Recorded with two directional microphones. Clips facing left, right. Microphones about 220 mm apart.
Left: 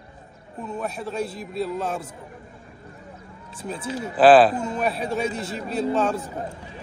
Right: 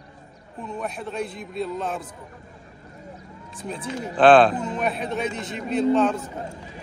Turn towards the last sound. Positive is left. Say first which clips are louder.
# right 3 dB
turn(degrees=5)  # may be behind; listen again after turning